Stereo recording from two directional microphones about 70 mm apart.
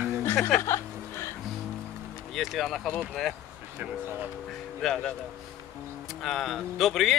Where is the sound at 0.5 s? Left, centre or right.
Left.